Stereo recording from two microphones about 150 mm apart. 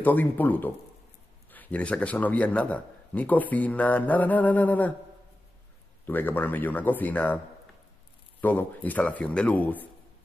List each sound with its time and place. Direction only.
0.0 s a man's voice: 10° left (ahead or behind)
6.0 s a man's voice: 10° left (ahead or behind)
8.4 s a man's voice: 10° left (ahead or behind)